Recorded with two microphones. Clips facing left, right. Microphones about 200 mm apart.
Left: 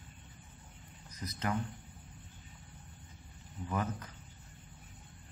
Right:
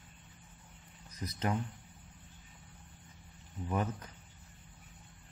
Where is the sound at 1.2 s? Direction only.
25° right (ahead or behind).